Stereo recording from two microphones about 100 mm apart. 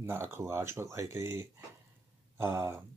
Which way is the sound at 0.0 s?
25° right (ahead or behind).